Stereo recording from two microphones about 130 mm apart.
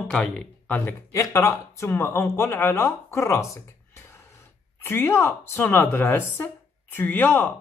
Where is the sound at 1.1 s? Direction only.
25° left (ahead or behind).